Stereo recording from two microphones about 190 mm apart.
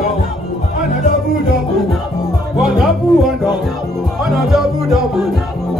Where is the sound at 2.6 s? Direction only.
Centre (ahead or behind).